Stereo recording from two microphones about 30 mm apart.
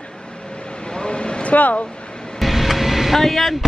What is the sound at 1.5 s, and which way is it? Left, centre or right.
Speech, left.